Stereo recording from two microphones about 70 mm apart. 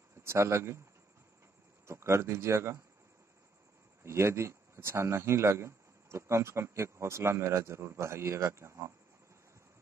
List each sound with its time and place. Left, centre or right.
0.2 s speech: right
1.9 s speech: right
4.0 s speech: right